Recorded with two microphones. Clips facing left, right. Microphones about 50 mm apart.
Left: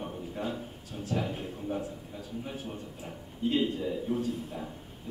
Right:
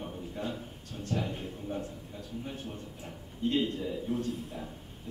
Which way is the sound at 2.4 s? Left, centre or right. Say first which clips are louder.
Left 1 dB; centre.